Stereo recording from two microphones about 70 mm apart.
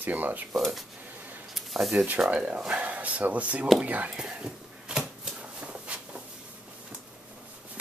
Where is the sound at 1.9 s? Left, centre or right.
Right.